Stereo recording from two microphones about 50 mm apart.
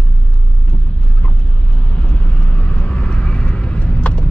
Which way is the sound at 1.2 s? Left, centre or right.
Left.